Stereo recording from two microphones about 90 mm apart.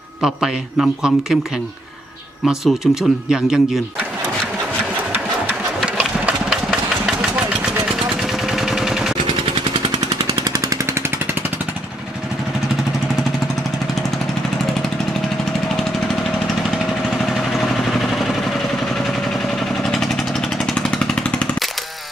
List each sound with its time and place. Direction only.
0.2 s a man's voice: 5° right (ahead or behind)
2.4 s a man's voice: 5° right (ahead or behind)
5.9 s engine: 10° right (ahead or behind)
8.2 s machine gun: 5° right (ahead or behind)
10.4 s jackhammer: 50° right (ahead or behind)
17.3 s vehicle: centre (ahead or behind)
19.8 s vehicle: 5° left (ahead or behind)